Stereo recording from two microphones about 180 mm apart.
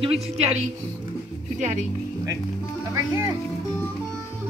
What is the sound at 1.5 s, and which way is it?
Speech, 40° right (ahead or behind).